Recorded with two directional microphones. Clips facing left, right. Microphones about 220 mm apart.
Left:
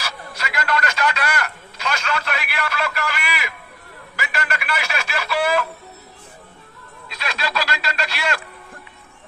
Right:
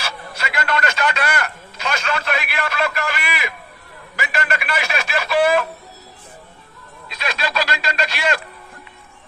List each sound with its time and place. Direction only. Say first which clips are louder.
0.0 s telephone: right 2 dB; 25° right (ahead or behind)
7.1 s telephone: right 2 dB; 20° right (ahead or behind)